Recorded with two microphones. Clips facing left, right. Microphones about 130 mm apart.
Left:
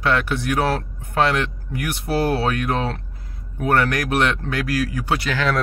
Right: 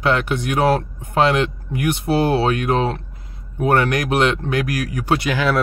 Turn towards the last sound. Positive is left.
turn(degrees=-15)  # may be behind; listen again after turning